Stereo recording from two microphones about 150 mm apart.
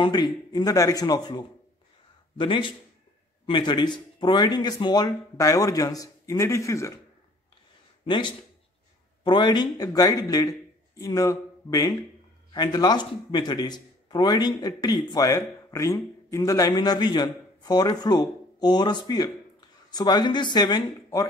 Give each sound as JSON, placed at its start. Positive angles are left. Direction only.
{"t": 0.0, "sound": "a man's voice", "side_deg": 25}
{"t": 8.0, "sound": "speech", "side_deg": 35}